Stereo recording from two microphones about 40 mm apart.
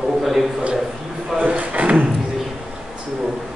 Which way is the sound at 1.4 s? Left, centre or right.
Right.